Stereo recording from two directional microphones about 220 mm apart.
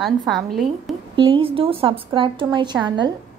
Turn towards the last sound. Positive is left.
turn(degrees=-20)  # may be behind; listen again after turning